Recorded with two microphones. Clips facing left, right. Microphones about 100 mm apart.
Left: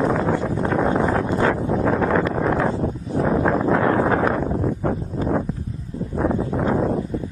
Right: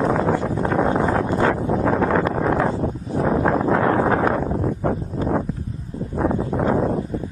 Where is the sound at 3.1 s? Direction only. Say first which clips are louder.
Even; 35° right (ahead or behind).